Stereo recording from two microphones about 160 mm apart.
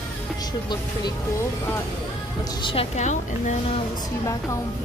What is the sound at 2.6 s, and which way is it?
Speech, 35° left (ahead or behind).